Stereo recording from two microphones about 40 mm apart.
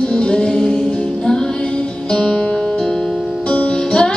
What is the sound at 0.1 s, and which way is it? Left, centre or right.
Music, left.